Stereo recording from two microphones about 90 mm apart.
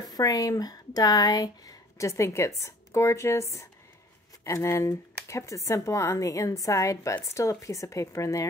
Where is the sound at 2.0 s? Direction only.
35° left (ahead or behind).